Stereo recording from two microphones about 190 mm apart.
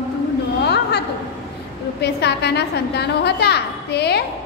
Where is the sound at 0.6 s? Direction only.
60° left (ahead or behind).